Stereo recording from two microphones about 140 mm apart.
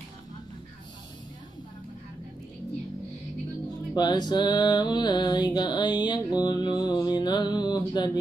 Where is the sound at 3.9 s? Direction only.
30° left (ahead or behind).